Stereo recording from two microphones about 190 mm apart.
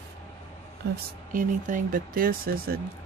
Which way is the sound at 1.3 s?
45° right (ahead or behind).